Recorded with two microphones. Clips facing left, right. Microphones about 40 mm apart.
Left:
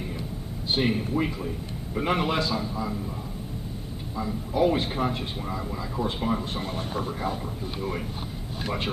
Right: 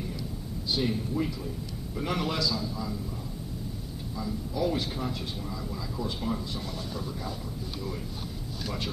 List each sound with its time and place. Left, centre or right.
0.7 s a man's voice: left
4.2 s a man's voice: left
8.6 s a man's voice: left